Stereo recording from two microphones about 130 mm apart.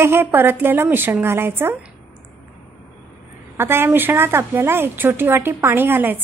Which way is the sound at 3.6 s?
15° right (ahead or behind).